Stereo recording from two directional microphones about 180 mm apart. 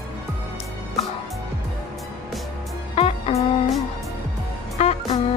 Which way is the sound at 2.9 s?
35° left (ahead or behind).